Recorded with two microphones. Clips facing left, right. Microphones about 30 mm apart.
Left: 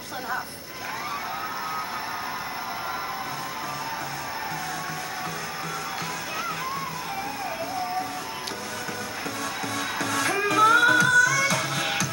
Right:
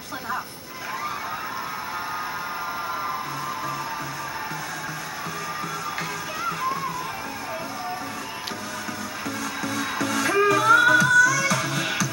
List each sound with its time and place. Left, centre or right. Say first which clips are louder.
9.9 s music: right 4 dB; centre
11.5 s music: right 1 dB; centre